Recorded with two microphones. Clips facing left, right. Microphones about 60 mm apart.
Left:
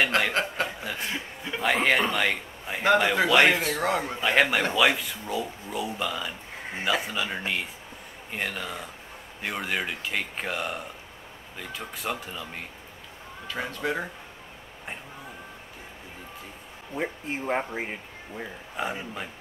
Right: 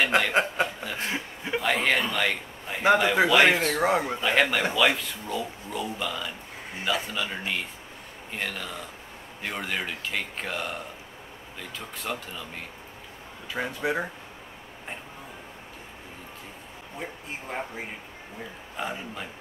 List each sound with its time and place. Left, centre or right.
0.3 s speech: centre
0.7 s chuckle: centre
1.0 s chuckle: centre
1.6 s a man's voice: centre
3.9 s speech: centre
4.2 s speech: centre
13.5 s speech: centre
16.9 s speech: left
18.8 s speech: centre